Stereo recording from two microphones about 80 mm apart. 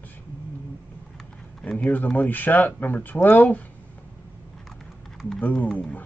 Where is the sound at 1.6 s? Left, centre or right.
Centre.